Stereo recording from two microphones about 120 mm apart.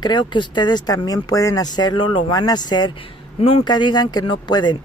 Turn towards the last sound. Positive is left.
turn(degrees=40)  # may be behind; listen again after turning